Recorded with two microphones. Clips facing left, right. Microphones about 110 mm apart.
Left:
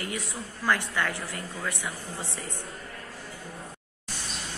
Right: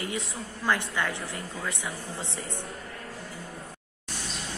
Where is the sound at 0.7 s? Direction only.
20° right (ahead or behind).